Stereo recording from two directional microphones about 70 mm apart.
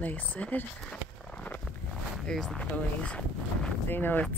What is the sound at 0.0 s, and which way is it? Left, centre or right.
Speech, left.